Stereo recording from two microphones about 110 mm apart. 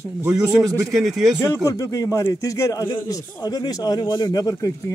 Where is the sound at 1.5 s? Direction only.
30° left (ahead or behind).